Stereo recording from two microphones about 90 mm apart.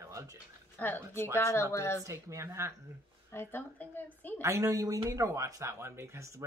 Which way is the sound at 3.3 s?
25° left (ahead or behind).